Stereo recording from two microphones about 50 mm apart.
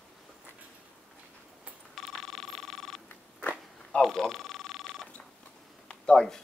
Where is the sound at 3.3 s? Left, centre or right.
Left.